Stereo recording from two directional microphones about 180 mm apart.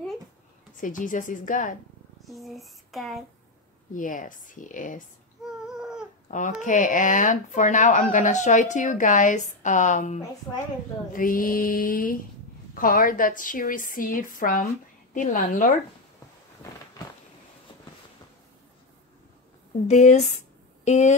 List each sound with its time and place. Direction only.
0.7 s speech: 45° left (ahead or behind)
2.2 s a sound: centre (ahead or behind)
3.9 s speech: 45° left (ahead or behind)
5.7 s dog: 5° right (ahead or behind)
6.3 s speech: 45° left (ahead or behind)
19.9 s a woman's voice: 40° left (ahead or behind)